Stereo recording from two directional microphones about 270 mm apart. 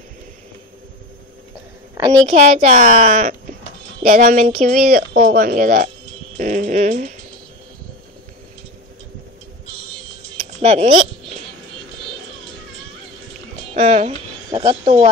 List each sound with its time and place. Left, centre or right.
2.2 s speech: right
10.6 s a sound: right
13.7 s speech: right